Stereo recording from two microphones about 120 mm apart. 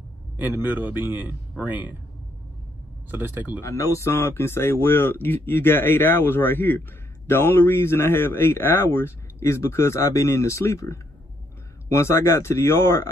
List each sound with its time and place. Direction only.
0.4 s a man's voice: 15° right (ahead or behind)
3.1 s a man's voice: 15° right (ahead or behind)
3.6 s speech: 25° left (ahead or behind)